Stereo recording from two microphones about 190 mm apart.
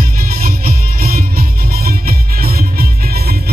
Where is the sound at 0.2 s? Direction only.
50° right (ahead or behind).